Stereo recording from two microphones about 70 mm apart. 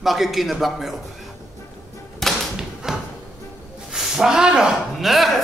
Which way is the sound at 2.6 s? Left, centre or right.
Centre.